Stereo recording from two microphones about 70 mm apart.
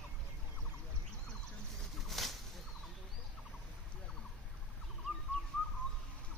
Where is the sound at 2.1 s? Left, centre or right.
Centre.